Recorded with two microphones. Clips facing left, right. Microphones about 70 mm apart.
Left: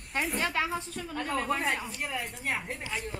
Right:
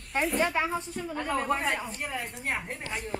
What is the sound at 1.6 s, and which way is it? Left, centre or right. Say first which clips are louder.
Speech: right 1 dB; centre.